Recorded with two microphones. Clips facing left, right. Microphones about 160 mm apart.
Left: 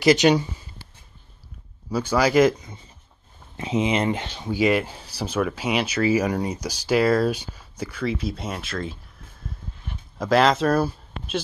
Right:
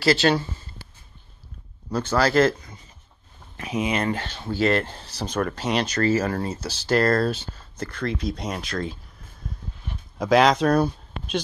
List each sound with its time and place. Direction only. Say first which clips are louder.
0.0 s speech: left 3 dB; 15° left (ahead or behind)
1.9 s speech: left 1 dB; 10° left (ahead or behind)
9.5 s a sound: right 1 dB; centre (ahead or behind)
10.1 s speech: right 1 dB; centre (ahead or behind)